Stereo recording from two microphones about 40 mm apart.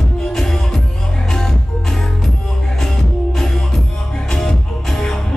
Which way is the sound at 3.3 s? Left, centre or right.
Centre.